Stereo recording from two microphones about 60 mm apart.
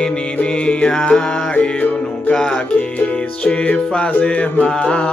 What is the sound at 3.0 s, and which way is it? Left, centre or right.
Music, left.